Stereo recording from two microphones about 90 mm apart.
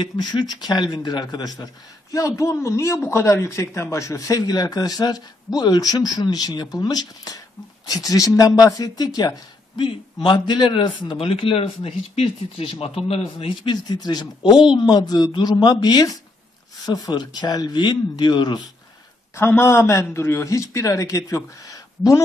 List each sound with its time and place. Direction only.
0.0 s a man's voice: 55° left (ahead or behind)
2.1 s a man's voice: 35° left (ahead or behind)
10.2 s a man's voice: 60° left (ahead or behind); by 13.5 s 90° left
13.7 s a man's voice: 50° left (ahead or behind)
19.3 s a man's voice: 25° left (ahead or behind)
21.6 s a sound: 40° left (ahead or behind)